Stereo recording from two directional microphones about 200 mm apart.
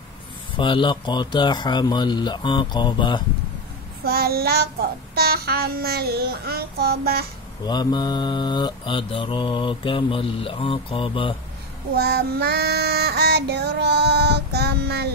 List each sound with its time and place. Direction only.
0.6 s mantra: 25° left (ahead or behind)
4.0 s child singing: 50° right (ahead or behind)
7.6 s mantra: 20° left (ahead or behind)
11.9 s child singing: 55° right (ahead or behind)